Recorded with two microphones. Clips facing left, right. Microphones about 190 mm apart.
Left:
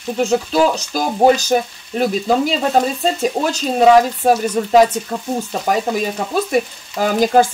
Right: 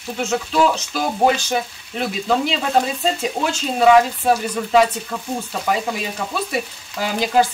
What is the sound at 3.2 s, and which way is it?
Speech, 40° left (ahead or behind).